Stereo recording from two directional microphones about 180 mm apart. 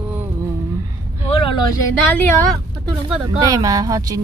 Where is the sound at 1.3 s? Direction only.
30° left (ahead or behind).